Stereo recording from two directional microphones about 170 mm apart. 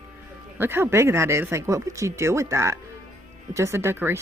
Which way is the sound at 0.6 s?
15° right (ahead or behind).